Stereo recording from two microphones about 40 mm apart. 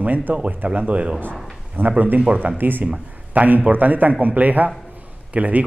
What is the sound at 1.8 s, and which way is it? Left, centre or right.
Speech, right.